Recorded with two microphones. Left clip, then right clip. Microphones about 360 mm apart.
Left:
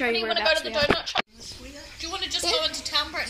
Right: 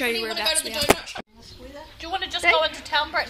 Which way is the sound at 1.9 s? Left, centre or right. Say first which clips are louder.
Right 2 dB; right.